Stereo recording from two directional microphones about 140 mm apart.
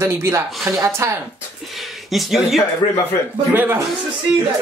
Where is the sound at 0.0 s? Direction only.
20° right (ahead or behind).